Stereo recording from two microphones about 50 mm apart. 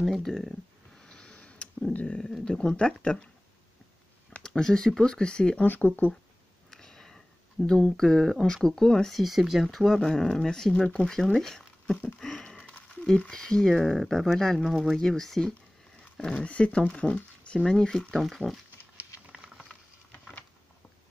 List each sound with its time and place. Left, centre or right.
0.2 s speech: centre
0.9 s a sound: centre
2.4 s speech: centre
4.4 s speech: centre
5.6 s speech: left
6.7 s sniff: centre
7.6 s speech: centre
9.1 s speech: centre
12.2 s a sound: centre
13.3 s speech: centre
16.4 s speech: left
17.6 s speech: centre
18.2 s speech: centre
19.3 s patter: right